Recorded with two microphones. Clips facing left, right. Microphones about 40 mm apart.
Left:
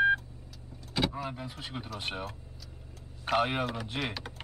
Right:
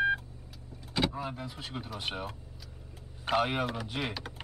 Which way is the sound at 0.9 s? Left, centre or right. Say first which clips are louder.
Even; centre.